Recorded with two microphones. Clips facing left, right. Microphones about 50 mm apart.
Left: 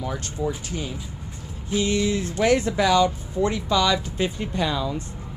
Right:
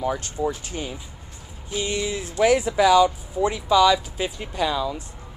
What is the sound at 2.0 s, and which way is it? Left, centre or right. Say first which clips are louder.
Speech: even; centre.